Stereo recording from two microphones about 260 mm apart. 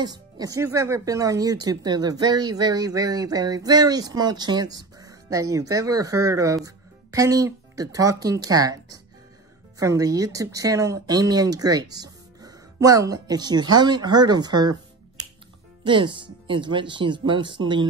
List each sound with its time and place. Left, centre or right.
0.0 s speech: centre
15.8 s speech: centre